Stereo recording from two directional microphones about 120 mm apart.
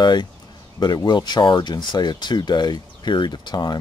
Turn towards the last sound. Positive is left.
turn(degrees=35)  # may be behind; listen again after turning